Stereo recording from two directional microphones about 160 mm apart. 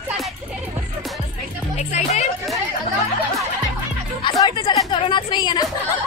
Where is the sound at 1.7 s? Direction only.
45° left (ahead or behind).